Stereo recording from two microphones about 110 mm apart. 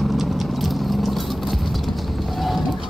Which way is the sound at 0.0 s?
Centre (ahead or behind).